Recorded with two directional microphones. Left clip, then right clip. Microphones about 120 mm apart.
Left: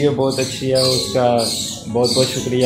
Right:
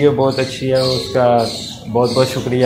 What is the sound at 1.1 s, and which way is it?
Speech, 10° left (ahead or behind).